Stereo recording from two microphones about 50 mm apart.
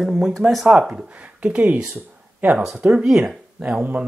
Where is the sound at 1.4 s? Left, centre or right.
Right.